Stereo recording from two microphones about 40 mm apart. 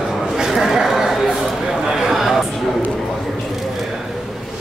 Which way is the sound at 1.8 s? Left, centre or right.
Centre.